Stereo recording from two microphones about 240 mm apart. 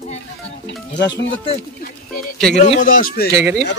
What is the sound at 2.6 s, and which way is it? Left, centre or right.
Speech, left.